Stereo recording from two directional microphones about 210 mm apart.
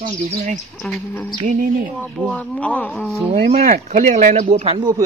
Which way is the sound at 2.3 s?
5° left (ahead or behind).